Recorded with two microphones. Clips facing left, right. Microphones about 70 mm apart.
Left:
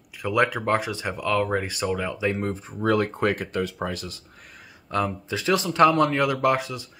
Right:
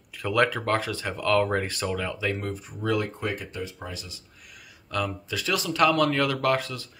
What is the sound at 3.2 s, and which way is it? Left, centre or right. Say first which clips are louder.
Speech: left 7 dB; left.